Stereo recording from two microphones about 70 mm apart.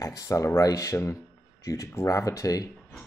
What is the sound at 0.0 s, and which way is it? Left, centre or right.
Speech, left.